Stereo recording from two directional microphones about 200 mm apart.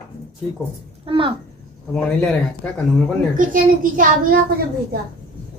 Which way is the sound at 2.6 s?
5° left (ahead or behind).